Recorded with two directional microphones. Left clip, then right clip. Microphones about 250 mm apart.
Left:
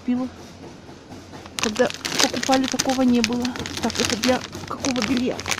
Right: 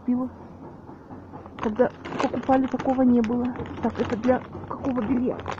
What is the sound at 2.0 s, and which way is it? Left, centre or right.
Speech, left.